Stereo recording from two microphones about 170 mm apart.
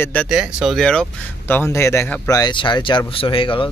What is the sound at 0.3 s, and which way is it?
Speech, 5° right (ahead or behind).